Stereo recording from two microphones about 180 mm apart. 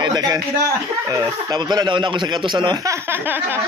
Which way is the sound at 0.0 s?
25° right (ahead or behind).